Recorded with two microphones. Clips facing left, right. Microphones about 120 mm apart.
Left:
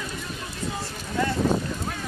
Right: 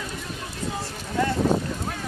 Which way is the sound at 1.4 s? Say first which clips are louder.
Right 1 dB; 25° right (ahead or behind).